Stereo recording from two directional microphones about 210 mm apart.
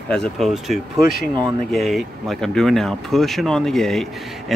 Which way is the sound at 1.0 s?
45° left (ahead or behind).